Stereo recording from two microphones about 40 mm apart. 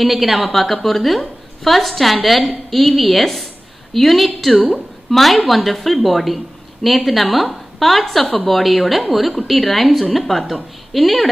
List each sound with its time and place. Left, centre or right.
0.0 s a woman's voice: centre